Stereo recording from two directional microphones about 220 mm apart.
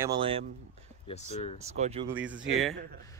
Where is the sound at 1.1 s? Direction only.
30° left (ahead or behind).